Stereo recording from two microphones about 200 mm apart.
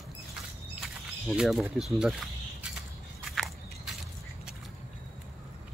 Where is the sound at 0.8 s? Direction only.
Centre (ahead or behind).